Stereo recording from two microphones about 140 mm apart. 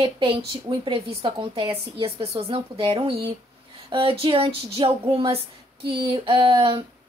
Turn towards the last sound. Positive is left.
turn(degrees=-40)  # may be behind; listen again after turning